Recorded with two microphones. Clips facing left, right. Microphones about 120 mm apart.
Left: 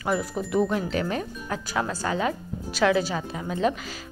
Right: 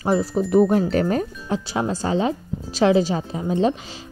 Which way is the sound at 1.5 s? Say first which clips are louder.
Right 4 dB; 30° right (ahead or behind).